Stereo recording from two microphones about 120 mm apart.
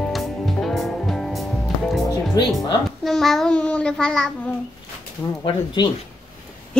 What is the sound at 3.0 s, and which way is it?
Child singing, centre (ahead or behind).